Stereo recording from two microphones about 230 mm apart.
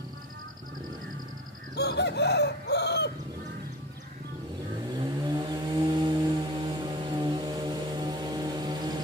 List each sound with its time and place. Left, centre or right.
1.8 s chicken: left
5.2 s vehicle: centre